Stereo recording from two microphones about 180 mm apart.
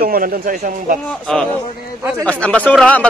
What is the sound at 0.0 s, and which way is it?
Speech, 55° right (ahead or behind).